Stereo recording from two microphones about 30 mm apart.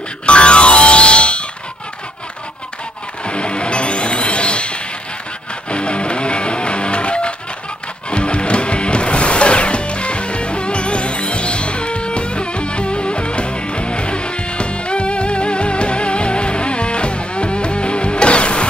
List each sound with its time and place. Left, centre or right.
0.3 s music: left
3.3 s music: left